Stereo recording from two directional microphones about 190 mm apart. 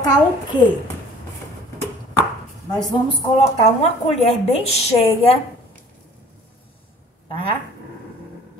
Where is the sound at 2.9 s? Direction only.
30° left (ahead or behind).